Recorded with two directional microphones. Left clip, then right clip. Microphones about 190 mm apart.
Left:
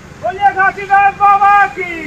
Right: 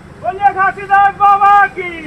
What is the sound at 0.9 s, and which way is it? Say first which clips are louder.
Speech: even; 30° left (ahead or behind).